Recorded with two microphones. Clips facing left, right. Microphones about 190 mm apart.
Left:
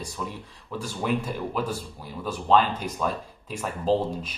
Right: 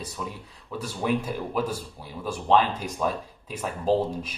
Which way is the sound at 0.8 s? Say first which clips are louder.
Right 1 dB; 5° right (ahead or behind).